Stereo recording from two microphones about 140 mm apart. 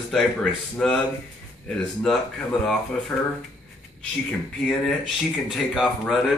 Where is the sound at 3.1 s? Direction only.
5° left (ahead or behind).